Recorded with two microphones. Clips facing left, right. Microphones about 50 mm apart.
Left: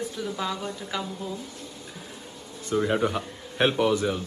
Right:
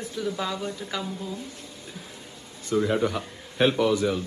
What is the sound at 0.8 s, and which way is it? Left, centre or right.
Speech, centre.